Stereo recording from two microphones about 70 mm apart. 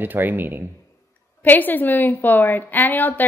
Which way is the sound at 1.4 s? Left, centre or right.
Left.